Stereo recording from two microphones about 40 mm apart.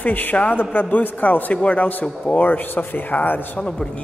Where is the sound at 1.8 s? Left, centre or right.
Left.